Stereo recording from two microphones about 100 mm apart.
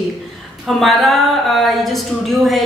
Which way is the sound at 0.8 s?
Centre (ahead or behind).